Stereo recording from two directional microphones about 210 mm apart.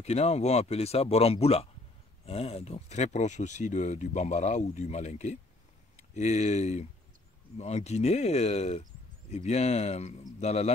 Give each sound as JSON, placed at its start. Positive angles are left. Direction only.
{"t": 0.0, "sound": "speech", "side_deg": 30}